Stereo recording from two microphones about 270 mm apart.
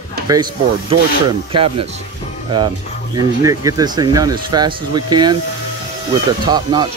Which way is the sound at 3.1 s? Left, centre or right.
Centre.